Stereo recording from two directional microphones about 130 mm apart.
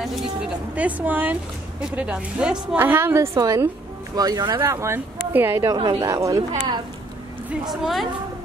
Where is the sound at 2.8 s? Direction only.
20° right (ahead or behind).